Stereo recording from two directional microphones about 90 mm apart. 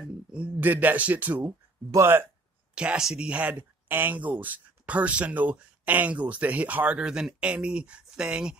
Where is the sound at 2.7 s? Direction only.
10° right (ahead or behind).